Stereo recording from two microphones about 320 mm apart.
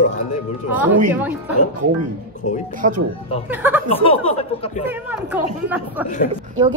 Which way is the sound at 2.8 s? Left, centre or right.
Right.